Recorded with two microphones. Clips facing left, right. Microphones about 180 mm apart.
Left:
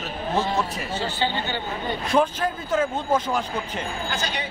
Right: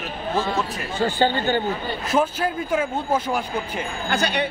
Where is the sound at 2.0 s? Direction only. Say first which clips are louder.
Even; 5° right (ahead or behind).